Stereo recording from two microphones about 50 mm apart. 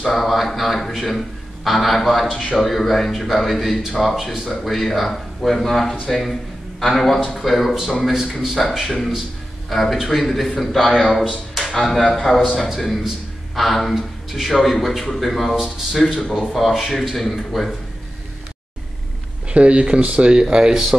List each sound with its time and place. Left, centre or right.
0.0 s a man's voice: centre
19.5 s speech: right